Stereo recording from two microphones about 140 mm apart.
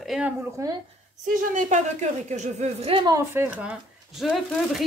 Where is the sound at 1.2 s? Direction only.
65° right (ahead or behind); by 3.1 s 45° right (ahead or behind).